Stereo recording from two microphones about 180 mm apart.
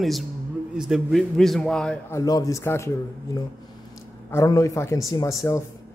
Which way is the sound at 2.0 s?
20° left (ahead or behind).